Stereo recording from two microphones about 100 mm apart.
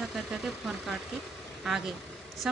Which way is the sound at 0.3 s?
5° right (ahead or behind).